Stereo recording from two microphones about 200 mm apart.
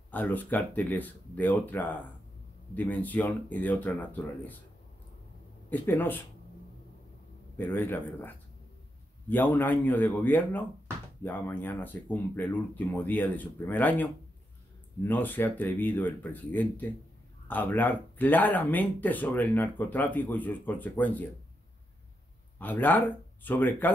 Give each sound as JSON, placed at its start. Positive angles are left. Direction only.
{"t": 0.1, "sound": "speech", "side_deg": 10}
{"t": 5.7, "sound": "speech", "side_deg": 10}
{"t": 7.5, "sound": "speech", "side_deg": 10}
{"t": 15.0, "sound": "speech", "side_deg": 10}
{"t": 22.6, "sound": "speech", "side_deg": 10}